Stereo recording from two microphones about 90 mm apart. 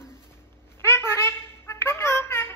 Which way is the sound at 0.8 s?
30° left (ahead or behind).